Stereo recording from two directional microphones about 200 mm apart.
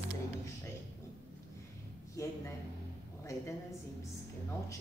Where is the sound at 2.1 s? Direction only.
15° left (ahead or behind).